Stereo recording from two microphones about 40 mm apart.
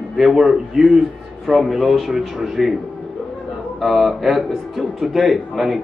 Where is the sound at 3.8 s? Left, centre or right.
Centre.